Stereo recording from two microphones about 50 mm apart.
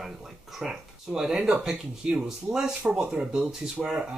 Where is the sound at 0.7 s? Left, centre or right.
Centre.